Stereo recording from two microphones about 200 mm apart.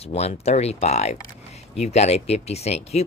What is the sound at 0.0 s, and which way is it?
Speech, 30° left (ahead or behind).